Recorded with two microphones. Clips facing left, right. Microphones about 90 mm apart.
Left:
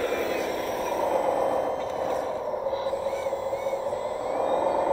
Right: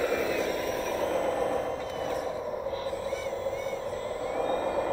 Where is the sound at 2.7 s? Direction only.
20° left (ahead or behind).